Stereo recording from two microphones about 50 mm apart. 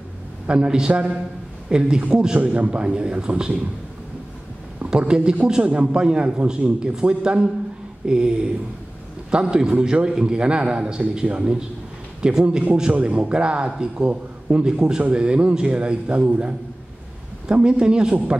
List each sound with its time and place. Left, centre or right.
0.5 s a man's voice: centre
4.8 s a man's voice: centre
18.1 s a man's voice: right